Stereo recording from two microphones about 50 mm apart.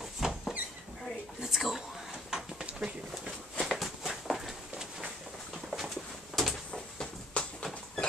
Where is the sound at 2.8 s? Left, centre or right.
Centre.